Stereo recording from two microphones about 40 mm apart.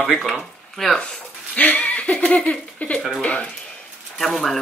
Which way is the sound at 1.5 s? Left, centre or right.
Left.